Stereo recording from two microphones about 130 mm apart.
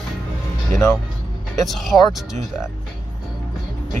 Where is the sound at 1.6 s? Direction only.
Centre (ahead or behind).